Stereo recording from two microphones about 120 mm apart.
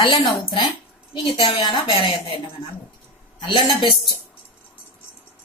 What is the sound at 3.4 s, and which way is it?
Speech, 40° left (ahead or behind).